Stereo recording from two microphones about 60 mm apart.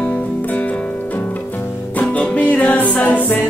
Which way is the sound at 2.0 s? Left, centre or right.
Left.